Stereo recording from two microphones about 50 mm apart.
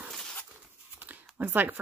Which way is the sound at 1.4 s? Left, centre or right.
Right.